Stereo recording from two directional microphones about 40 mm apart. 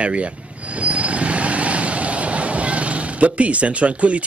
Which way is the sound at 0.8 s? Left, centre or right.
Right.